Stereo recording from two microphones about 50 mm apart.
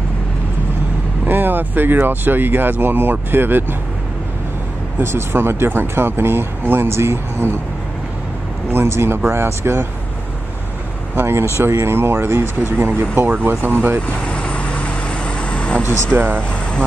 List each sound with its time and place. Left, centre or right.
1.2 s speech: right
5.0 s speech: right
8.7 s speech: right
11.1 s speech: right
14.2 s vehicle: left
16.1 s speech: right